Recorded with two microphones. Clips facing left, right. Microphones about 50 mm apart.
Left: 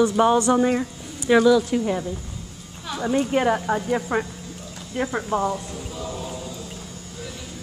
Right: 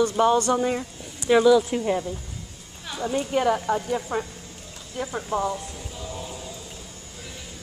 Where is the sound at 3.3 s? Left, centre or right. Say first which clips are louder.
Left 1 dB; left.